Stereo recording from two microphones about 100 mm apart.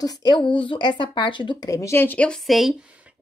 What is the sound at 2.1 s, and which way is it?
Speech, 10° left (ahead or behind).